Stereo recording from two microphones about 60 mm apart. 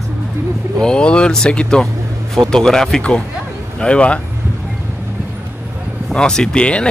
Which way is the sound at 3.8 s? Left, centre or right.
Centre.